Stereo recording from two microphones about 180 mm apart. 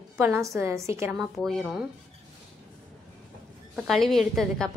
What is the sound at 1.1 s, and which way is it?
Speech, centre (ahead or behind).